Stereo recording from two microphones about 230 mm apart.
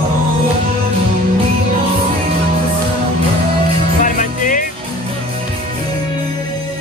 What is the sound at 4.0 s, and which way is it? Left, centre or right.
Music, left.